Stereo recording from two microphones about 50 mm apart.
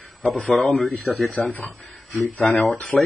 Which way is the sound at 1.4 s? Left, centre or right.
Left.